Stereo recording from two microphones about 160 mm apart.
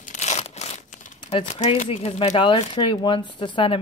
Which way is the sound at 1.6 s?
40° left (ahead or behind).